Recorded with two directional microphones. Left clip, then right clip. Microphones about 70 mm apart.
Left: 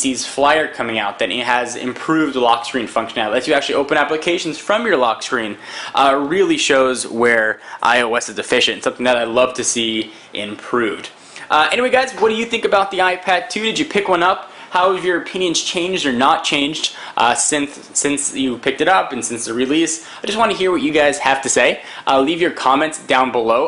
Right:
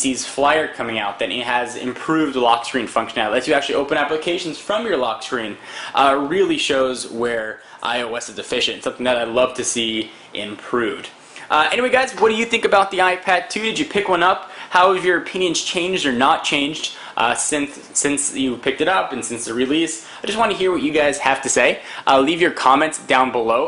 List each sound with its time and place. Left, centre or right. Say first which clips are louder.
0.0 s speech: left 2 dB; centre
0.4 s speech: left 2 dB; centre
3.7 s speech: left 3 dB; centre
5.9 s speech: left 2 dB; centre; by 7.0 s left
7.2 s speech: left 10 dB; left; by 14.3 s centre
14.7 s speech: right 1 dB; centre